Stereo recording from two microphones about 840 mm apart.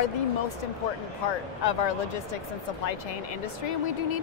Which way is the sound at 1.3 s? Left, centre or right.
Left.